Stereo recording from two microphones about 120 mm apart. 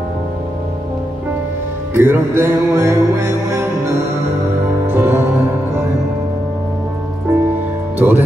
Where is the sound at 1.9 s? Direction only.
20° right (ahead or behind).